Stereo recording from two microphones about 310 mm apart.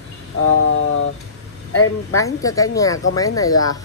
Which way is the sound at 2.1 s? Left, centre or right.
Centre.